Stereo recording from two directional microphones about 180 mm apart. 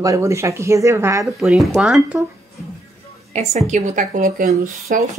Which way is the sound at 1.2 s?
Centre (ahead or behind).